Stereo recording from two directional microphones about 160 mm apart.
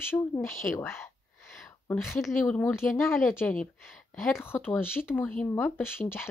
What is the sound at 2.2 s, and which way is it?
Speech, 5° left (ahead or behind).